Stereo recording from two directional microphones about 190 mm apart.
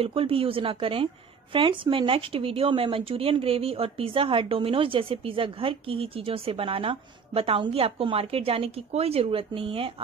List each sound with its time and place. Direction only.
0.0 s speech: 30° right (ahead or behind)